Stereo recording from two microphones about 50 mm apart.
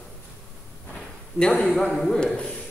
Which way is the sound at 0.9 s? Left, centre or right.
Centre.